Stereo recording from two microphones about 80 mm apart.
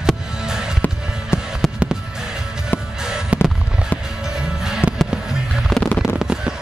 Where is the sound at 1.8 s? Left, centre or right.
Centre.